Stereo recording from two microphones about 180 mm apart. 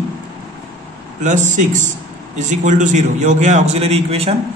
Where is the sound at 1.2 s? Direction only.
45° right (ahead or behind).